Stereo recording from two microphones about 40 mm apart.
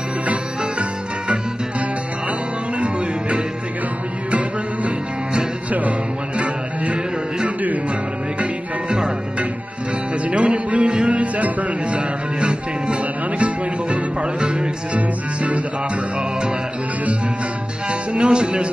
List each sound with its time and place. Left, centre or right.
2.8 s music: right
10.3 s music: right
15.0 s music: right
17.8 s music: right